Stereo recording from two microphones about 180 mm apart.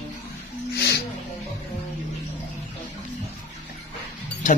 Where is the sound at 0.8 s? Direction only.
65° left (ahead or behind).